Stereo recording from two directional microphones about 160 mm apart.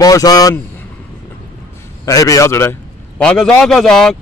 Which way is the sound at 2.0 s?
20° left (ahead or behind).